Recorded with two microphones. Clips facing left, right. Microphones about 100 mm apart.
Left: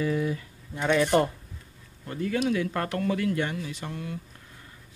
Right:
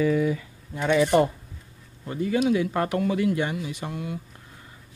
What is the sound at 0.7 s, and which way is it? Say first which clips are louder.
Speech: right 3 dB; 5° right (ahead or behind).